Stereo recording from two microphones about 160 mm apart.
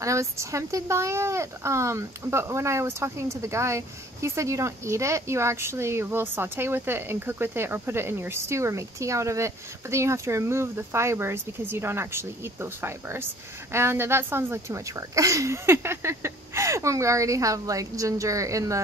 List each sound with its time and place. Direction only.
0.0 s speech: 20° right (ahead or behind)